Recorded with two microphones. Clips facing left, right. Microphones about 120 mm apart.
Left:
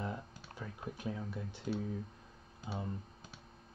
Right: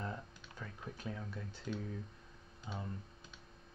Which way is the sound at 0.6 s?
10° left (ahead or behind).